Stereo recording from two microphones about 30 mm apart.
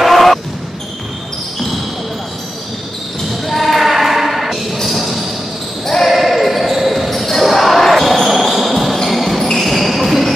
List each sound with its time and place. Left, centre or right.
0.0 s basketball bounce: centre
3.3 s basketball bounce: centre
4.8 s a sound: centre
5.9 s basketball bounce: centre
6.1 s basketball bounce: centre
7.1 s basketball bounce: centre